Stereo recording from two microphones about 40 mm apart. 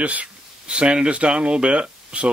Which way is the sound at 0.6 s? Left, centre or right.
Right.